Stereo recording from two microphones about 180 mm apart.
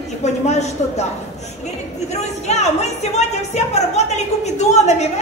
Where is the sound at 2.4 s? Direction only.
40° left (ahead or behind).